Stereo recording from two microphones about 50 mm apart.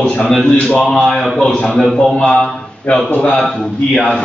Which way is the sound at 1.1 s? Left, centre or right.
Centre.